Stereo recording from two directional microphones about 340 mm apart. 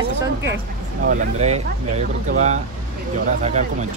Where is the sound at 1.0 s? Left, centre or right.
Centre.